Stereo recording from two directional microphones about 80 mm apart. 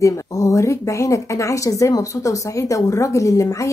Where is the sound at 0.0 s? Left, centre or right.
Left.